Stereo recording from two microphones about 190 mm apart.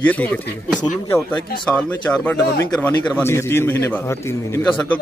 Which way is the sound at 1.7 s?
5° left (ahead or behind).